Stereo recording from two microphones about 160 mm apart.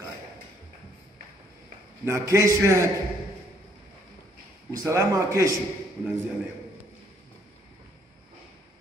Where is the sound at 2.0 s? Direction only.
15° right (ahead or behind).